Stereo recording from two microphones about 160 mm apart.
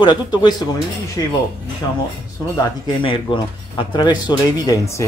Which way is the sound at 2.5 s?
30° left (ahead or behind).